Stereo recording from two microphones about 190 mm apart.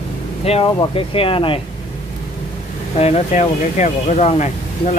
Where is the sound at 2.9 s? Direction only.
35° left (ahead or behind).